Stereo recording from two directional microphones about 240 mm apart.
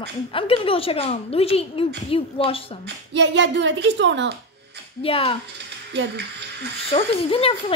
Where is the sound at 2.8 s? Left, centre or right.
Right.